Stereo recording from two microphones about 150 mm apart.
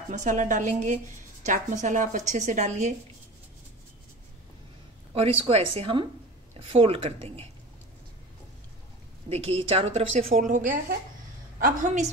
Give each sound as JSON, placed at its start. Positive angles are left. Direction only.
{"t": 0.1, "sound": "a woman's voice", "side_deg": -55}
{"t": 5.1, "sound": "a woman's voice", "side_deg": -40}
{"t": 9.3, "sound": "a woman's voice", "side_deg": -40}
{"t": 10.2, "sound": "a woman's voice", "side_deg": -60}